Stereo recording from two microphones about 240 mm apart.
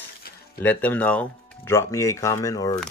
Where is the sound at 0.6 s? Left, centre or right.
Centre.